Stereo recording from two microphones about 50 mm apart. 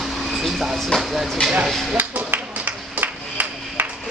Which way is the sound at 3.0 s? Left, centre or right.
Right.